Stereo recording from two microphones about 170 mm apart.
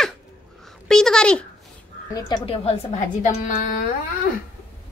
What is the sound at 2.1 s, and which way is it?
A woman's voice, 30° left (ahead or behind).